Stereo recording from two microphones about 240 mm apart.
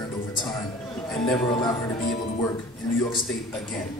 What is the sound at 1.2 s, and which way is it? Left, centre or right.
Speech, centre.